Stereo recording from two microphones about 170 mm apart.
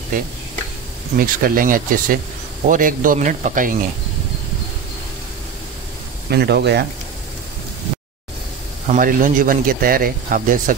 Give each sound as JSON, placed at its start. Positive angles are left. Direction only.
{"t": 0.1, "sound": "a man's voice", "side_deg": -50}
{"t": 6.3, "sound": "speech", "side_deg": -75}
{"t": 8.8, "sound": "a man's voice", "side_deg": -50}